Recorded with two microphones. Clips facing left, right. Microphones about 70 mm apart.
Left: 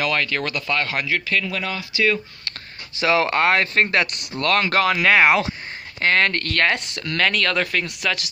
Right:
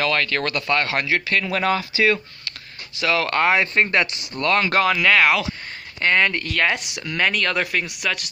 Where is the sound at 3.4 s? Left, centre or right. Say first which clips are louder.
Even; centre.